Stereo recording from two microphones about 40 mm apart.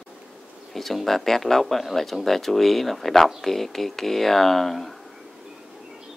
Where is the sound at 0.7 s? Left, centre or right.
Centre.